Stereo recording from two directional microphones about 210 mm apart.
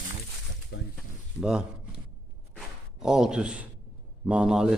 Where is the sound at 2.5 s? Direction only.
5° right (ahead or behind).